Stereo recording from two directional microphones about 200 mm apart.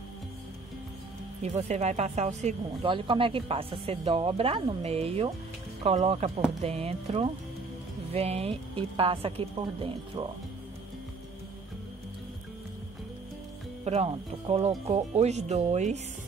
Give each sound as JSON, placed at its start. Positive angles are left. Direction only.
{"t": 1.4, "sound": "speech", "side_deg": -35}
{"t": 13.8, "sound": "speech", "side_deg": -30}